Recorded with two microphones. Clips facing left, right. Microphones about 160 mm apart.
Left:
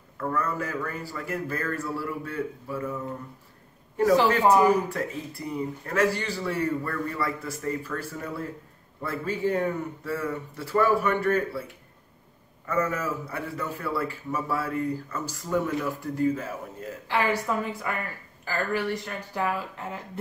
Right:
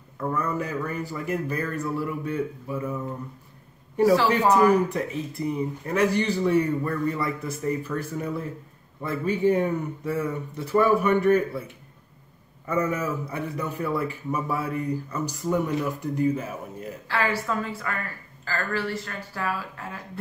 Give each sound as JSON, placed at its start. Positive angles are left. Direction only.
{"t": 0.2, "sound": "a man's voice", "side_deg": -15}
{"t": 4.8, "sound": "a man's voice", "side_deg": -20}
{"t": 17.1, "sound": "a woman's voice", "side_deg": 15}